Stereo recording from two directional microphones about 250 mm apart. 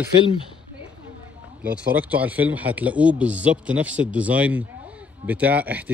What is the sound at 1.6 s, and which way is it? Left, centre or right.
Speech, centre.